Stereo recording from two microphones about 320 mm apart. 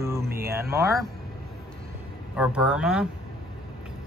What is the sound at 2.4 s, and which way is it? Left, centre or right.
Speech, centre.